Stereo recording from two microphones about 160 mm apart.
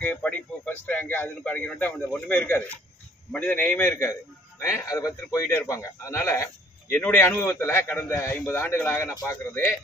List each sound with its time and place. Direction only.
0.0 s a man's voice: 10° left (ahead or behind)